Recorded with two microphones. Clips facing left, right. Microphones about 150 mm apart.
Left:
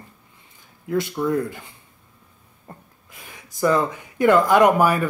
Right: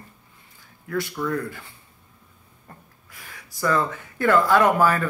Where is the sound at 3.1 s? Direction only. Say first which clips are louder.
Left 2 dB; 20° left (ahead or behind).